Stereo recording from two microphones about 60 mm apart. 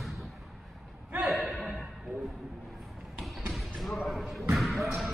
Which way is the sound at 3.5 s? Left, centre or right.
Centre.